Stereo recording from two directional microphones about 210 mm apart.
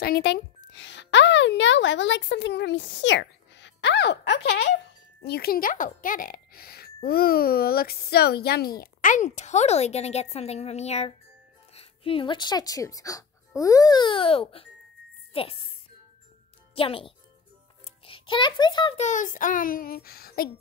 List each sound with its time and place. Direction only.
0.0 s a child's voice: 50° left (ahead or behind); by 15.7 s 25° left (ahead or behind)
16.7 s a child's voice: 25° left (ahead or behind)
19.0 s speech: 35° left (ahead or behind)